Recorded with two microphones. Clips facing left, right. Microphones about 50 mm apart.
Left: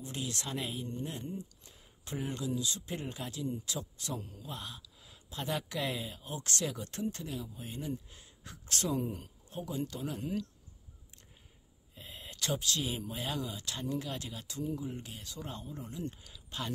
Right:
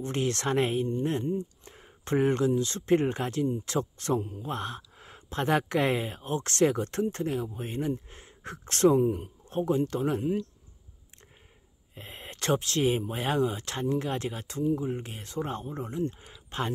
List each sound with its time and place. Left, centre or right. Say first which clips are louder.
0.0 s speech: right 10 dB; right
4.2 s speech: right 11 dB; right
4.5 s speech: right 10 dB; right
11.9 s speech: right 5 dB; right